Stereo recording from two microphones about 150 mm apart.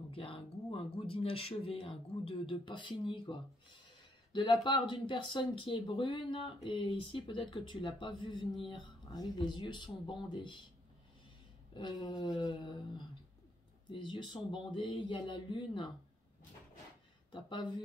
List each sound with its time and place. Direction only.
0.1 s speech: 35° left (ahead or behind)
12.0 s a sound: 30° left (ahead or behind)
13.8 s speech: 30° left (ahead or behind)
17.3 s speech: 35° left (ahead or behind)